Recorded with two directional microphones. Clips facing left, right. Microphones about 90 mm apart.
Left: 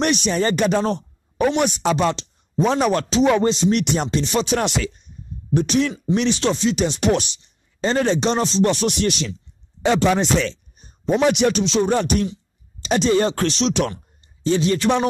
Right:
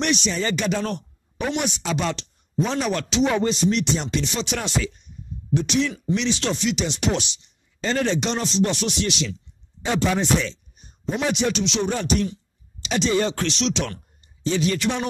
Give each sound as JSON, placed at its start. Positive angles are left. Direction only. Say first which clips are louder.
{"t": 0.0, "sound": "speech", "louder": "left 4 dB", "side_deg": 45}
{"t": 2.0, "sound": "speech", "louder": "left 5 dB", "side_deg": 35}
{"t": 3.7, "sound": "speech", "louder": "left 3 dB", "side_deg": 55}
{"t": 4.1, "sound": "speech", "louder": "left 6 dB", "side_deg": 40}
{"t": 6.4, "sound": "speech", "louder": "left 5 dB", "side_deg": 35}
{"t": 8.8, "sound": "speech", "louder": "left 4 dB", "side_deg": 50}
{"t": 9.8, "sound": "speech", "louder": "left 4 dB", "side_deg": 65}
{"t": 11.5, "sound": "speech", "louder": "left 5 dB", "side_deg": 40}
{"t": 11.9, "sound": "speech", "louder": "left 4 dB", "side_deg": 55}
{"t": 12.8, "sound": "speech", "louder": "left 4 dB", "side_deg": 45}